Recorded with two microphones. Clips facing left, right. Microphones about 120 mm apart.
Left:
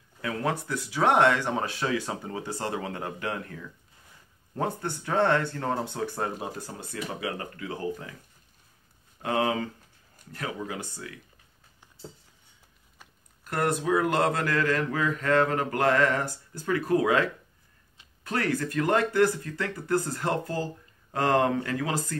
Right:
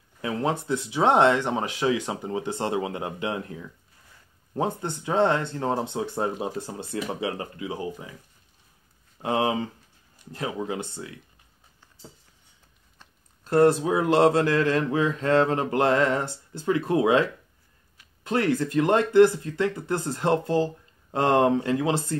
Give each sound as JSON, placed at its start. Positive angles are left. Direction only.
{"t": 0.2, "sound": "speech", "side_deg": -25}
{"t": 9.2, "sound": "speech", "side_deg": -20}
{"t": 13.4, "sound": "speech", "side_deg": -30}